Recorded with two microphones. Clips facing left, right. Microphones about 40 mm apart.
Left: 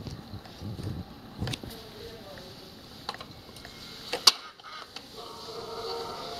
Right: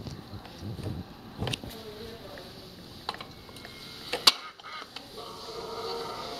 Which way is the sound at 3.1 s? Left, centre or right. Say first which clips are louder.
Right 2 dB; centre.